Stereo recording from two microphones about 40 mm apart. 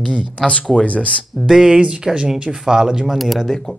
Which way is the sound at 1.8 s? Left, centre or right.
Centre.